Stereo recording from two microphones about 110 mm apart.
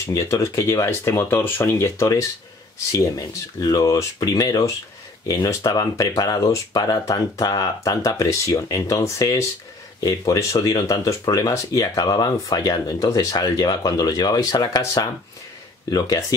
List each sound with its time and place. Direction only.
0.0 s speech: 30° left (ahead or behind)